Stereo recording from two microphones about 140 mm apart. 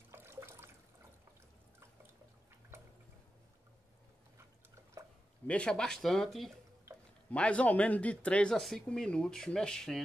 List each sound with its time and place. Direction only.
0.1 s toilet flush: 15° right (ahead or behind)
5.5 s speech: 5° left (ahead or behind)